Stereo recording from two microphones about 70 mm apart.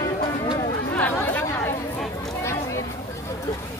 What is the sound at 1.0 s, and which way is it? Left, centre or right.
Chatter, left.